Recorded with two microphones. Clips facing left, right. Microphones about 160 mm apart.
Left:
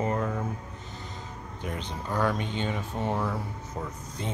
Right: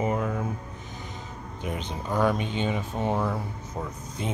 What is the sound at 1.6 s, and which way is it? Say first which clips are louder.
Speech: right 2 dB; 20° right (ahead or behind).